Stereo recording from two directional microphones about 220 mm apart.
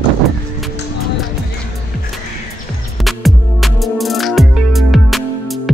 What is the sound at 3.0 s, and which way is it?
Music, centre (ahead or behind).